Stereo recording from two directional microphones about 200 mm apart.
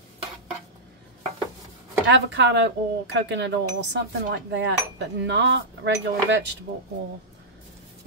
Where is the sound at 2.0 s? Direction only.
60° right (ahead or behind).